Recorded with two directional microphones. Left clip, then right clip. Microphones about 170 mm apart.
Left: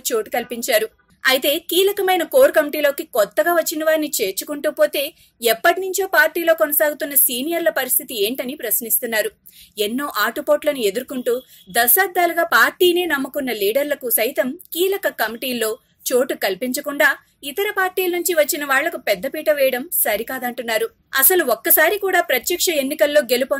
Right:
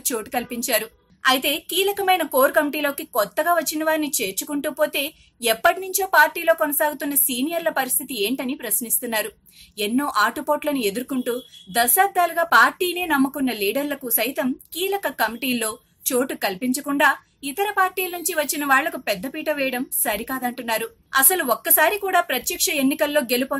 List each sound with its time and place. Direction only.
0.0 s a woman's voice: 15° left (ahead or behind)